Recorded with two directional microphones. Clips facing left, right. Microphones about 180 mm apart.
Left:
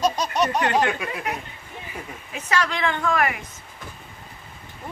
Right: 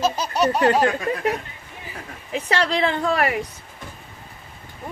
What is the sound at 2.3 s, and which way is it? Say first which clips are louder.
A woman's voice: right 3 dB; 35° right (ahead or behind).